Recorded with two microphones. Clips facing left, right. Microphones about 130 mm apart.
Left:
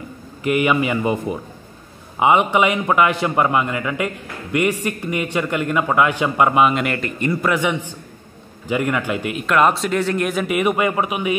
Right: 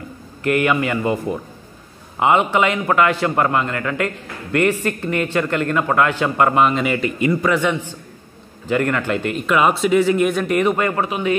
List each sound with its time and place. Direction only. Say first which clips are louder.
0.4 s a man's voice: even; 15° left (ahead or behind)
9.5 s speech: right 1 dB; centre (ahead or behind); by 11.3 s 15° left (ahead or behind)